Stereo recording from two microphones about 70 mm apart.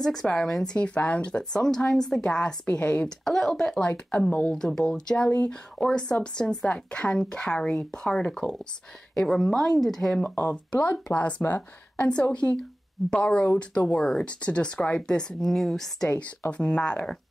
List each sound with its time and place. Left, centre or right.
0.0 s speech: centre
10.2 s speech: left
10.5 s speech: centre